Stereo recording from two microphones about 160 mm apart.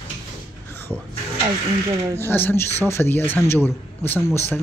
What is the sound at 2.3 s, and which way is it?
Speech, 15° left (ahead or behind).